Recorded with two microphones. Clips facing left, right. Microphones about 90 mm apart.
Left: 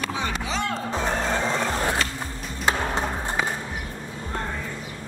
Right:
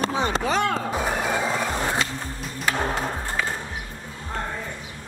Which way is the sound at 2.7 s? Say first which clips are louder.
Left 1 dB; 20° left (ahead or behind).